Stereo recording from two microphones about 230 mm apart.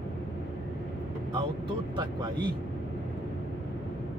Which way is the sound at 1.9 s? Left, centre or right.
Centre.